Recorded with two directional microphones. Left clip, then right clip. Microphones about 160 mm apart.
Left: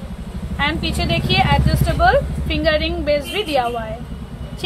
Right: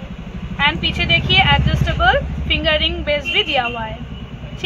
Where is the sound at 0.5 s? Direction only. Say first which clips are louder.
Right 4 dB; 35° left (ahead or behind).